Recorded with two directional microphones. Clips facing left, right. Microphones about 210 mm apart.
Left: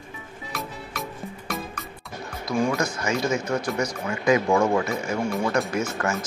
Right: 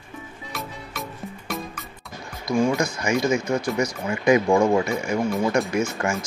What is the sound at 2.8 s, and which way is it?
Speech, 15° right (ahead or behind).